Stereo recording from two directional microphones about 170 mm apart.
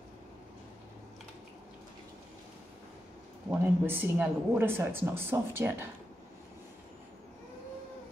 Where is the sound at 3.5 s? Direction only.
10° right (ahead or behind).